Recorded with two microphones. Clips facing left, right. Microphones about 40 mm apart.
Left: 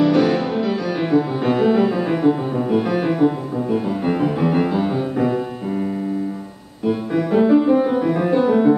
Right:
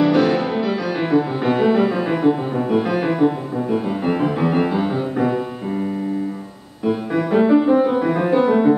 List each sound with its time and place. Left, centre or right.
0.0 s music: centre
6.9 s music: centre